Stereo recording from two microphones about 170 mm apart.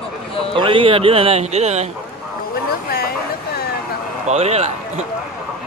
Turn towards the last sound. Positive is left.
turn(degrees=-40)  # may be behind; listen again after turning